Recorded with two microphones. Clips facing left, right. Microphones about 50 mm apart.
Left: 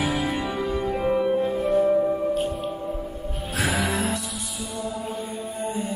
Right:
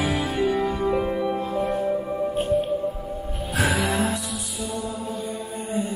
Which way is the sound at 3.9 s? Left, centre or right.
Right.